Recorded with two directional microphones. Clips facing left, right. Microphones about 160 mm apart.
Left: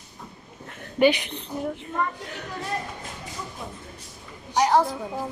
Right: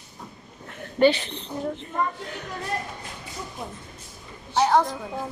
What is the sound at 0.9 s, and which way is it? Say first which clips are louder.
Speech: right 1 dB; 15° left (ahead or behind).